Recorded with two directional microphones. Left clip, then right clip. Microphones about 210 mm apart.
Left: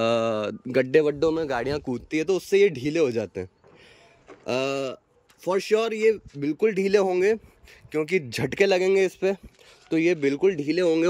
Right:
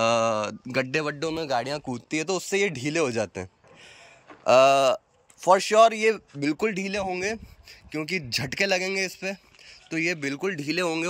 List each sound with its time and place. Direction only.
0.0 s speech: 10° left (ahead or behind)
4.5 s a man's voice: 5° left (ahead or behind)
6.7 s speech: 20° left (ahead or behind); by 11.1 s 5° left (ahead or behind)